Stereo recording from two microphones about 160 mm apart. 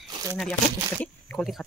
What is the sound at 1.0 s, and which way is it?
Speech, 10° left (ahead or behind).